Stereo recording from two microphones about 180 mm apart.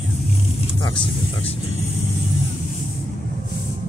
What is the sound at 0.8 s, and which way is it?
Vehicle, 25° left (ahead or behind).